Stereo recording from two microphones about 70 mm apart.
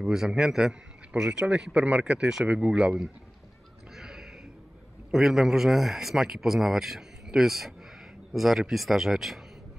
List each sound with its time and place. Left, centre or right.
0.0 s a man's voice: centre
3.9 s a sound: centre
5.1 s speech: centre